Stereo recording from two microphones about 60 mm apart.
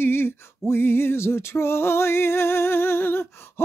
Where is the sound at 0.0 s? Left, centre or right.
Left.